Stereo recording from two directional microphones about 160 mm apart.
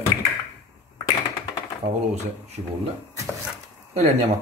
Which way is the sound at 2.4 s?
40° right (ahead or behind).